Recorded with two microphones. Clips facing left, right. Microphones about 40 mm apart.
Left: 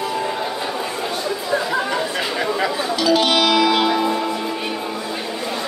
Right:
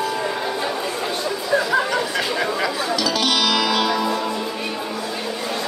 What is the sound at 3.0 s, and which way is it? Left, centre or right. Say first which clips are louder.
Music: left 6 dB; left.